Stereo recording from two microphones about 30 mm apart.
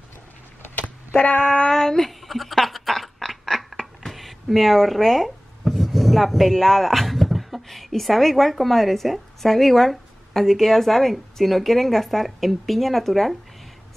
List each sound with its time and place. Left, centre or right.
1.4 s female singing: left
1.7 s speech: centre
2.0 s a sound: centre
4.1 s speech: centre
5.6 s a sound: centre
7.6 s a woman's voice: centre